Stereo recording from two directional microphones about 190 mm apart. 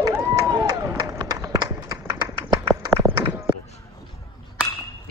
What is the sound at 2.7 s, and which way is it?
Run, 10° right (ahead or behind).